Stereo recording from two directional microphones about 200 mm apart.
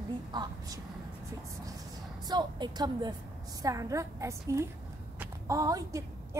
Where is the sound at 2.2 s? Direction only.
20° right (ahead or behind).